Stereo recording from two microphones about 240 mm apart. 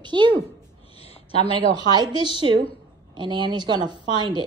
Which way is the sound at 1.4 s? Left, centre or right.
Centre.